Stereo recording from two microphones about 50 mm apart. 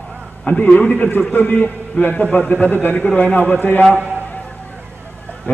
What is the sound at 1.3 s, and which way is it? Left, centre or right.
A man's voice, left.